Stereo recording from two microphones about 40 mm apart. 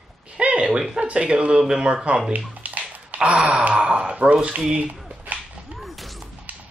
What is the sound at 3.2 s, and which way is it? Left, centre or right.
Speech, right.